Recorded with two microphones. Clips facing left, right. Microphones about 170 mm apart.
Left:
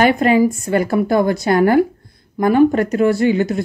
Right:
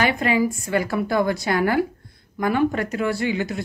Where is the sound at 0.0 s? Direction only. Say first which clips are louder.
Left 7 dB; 45° left (ahead or behind).